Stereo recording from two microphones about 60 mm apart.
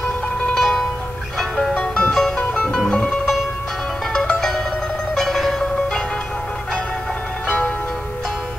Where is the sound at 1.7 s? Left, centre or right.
Centre.